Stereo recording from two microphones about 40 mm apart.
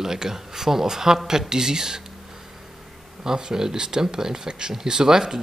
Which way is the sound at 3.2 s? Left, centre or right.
Centre.